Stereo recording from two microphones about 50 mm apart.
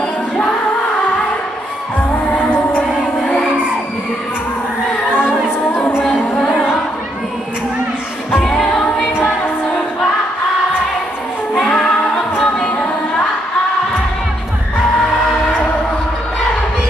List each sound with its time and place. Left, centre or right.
2.3 s music: left
5.2 s music: centre
6.0 s singing: centre
11.6 s music: centre